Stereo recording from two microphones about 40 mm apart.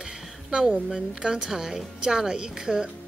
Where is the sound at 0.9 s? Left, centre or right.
Centre.